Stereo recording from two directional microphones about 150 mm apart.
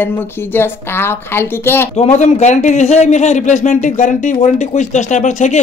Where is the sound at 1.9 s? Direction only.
45° left (ahead or behind).